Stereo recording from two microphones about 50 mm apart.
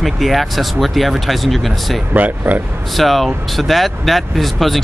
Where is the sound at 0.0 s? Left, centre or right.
Centre.